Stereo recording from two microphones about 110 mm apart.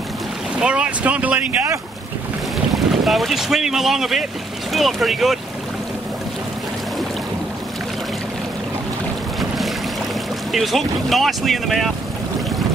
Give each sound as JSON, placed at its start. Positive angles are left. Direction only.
{"t": 0.6, "sound": "speech", "side_deg": -10}
{"t": 2.7, "sound": "speech", "side_deg": 0}
{"t": 10.5, "sound": "speech", "side_deg": 0}